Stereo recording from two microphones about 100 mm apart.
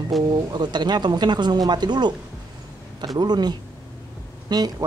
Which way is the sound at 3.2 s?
45° right (ahead or behind).